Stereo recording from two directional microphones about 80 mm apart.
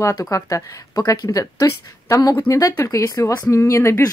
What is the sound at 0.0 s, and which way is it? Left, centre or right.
Speech, left.